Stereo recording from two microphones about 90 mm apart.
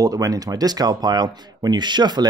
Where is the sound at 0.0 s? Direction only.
40° right (ahead or behind).